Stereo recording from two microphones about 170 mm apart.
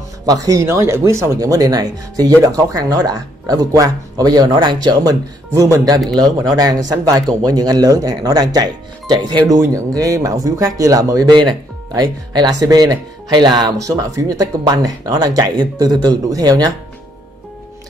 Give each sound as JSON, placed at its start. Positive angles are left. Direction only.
{"t": 0.3, "sound": "speech", "side_deg": -20}